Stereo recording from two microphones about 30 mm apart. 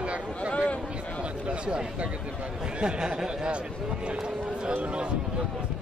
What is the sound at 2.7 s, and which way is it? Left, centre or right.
Speech, right.